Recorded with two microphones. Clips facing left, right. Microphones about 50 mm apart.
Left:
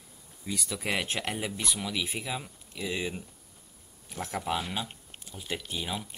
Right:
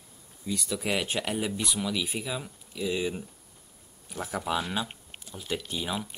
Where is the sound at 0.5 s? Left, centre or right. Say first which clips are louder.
Right 2 dB; centre.